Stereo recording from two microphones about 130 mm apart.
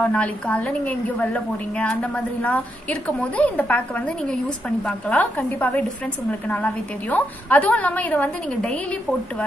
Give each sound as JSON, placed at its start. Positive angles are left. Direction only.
{"t": 0.0, "sound": "a woman's voice", "side_deg": 10}